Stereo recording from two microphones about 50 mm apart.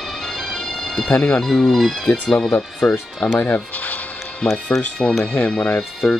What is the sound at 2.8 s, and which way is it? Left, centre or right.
Speech, left.